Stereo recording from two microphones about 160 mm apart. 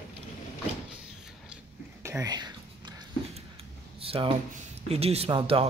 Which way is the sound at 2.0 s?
20° right (ahead or behind).